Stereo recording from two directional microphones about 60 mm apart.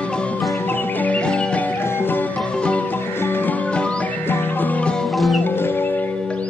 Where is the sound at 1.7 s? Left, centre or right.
Left.